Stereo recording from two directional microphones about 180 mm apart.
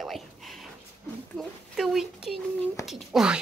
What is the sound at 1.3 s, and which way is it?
Speech, centre (ahead or behind).